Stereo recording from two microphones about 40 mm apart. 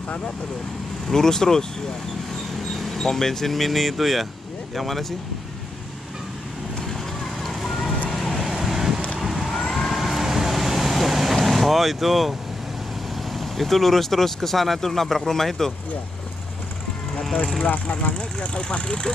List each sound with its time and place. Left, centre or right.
1.0 s speech: centre
2.5 s speech: centre
7.4 s fire: centre
8.1 s vehicle: centre
13.3 s speech: centre
17.1 s vehicle: centre
18.1 s speech: left